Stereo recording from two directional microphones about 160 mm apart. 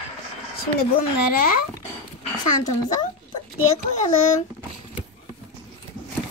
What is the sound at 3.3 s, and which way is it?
Speech, 40° left (ahead or behind).